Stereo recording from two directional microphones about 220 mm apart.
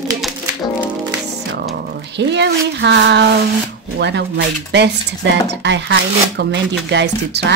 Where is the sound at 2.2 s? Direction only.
50° right (ahead or behind).